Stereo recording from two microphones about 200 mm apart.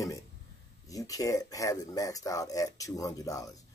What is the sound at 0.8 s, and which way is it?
Speech, 15° left (ahead or behind).